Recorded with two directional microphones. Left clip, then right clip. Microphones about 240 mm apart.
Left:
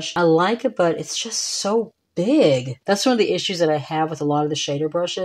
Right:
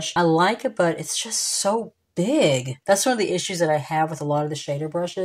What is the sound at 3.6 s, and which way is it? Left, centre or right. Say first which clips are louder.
Speech: right 1 dB; left.